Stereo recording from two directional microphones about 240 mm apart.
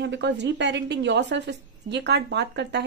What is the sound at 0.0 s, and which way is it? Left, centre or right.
A woman's voice, right.